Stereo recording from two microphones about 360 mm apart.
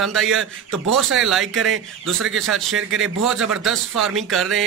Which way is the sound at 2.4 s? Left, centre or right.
Centre.